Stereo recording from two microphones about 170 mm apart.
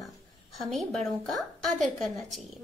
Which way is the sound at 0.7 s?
Centre (ahead or behind).